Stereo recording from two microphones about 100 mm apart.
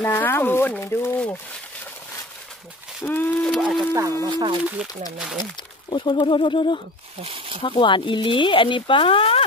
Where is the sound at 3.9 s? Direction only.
35° right (ahead or behind).